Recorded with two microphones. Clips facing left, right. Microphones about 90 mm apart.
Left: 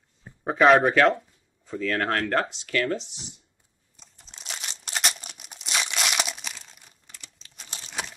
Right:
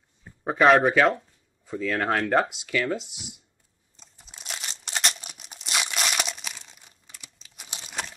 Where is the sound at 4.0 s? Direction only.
5° right (ahead or behind).